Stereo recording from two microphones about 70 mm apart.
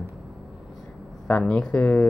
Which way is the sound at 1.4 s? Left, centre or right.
Centre.